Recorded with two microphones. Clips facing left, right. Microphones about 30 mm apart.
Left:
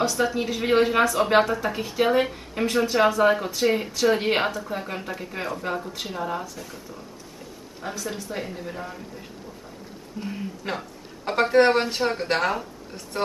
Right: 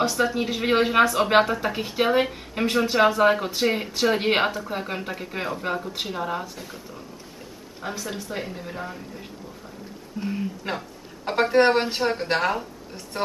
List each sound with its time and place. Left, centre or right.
0.0 s speech: centre
3.6 s a woman's voice: centre